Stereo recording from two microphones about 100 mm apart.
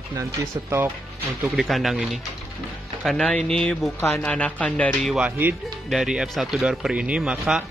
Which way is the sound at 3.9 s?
25° left (ahead or behind).